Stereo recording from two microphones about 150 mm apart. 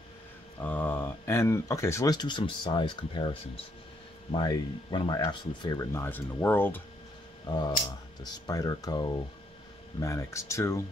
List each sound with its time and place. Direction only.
0.7 s speech: 10° left (ahead or behind); by 5.9 s 30° left (ahead or behind)
5.9 s speech: 15° left (ahead or behind)
7.4 s speech: 30° left (ahead or behind)